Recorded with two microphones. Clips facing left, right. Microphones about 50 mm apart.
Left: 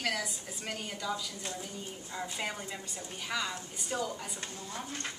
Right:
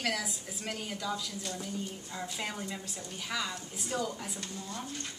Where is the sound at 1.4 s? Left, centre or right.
Centre.